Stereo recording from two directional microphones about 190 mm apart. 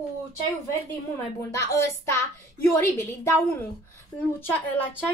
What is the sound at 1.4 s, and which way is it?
A woman's voice, 15° left (ahead or behind).